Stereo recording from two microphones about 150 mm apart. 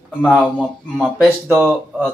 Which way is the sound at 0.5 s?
5° left (ahead or behind).